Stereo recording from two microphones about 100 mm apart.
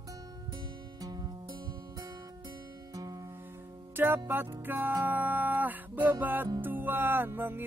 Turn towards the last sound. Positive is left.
turn(degrees=-20)  # may be behind; listen again after turning